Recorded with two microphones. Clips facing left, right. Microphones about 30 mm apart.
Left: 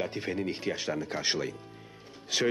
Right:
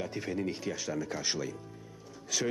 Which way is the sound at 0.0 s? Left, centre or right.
Left.